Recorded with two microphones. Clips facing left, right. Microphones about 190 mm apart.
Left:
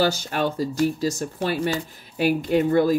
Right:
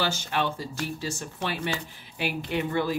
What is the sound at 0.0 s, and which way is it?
Speech, 40° left (ahead or behind).